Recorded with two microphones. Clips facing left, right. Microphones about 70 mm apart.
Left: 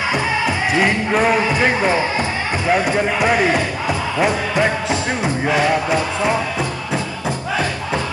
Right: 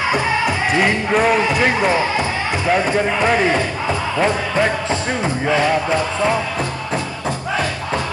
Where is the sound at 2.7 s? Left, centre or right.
Centre.